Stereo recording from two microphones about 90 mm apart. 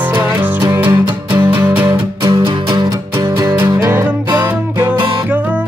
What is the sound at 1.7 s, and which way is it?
Music, 20° right (ahead or behind).